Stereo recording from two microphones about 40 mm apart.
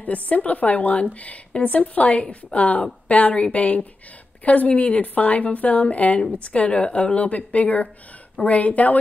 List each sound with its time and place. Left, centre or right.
0.3 s a woman's voice: left